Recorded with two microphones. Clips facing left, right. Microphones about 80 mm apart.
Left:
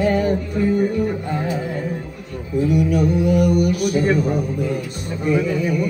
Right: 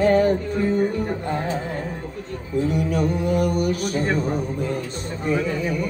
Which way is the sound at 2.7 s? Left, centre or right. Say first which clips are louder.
Left 6 dB; right.